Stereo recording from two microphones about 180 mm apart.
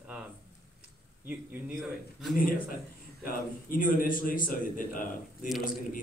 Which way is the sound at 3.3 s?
50° left (ahead or behind).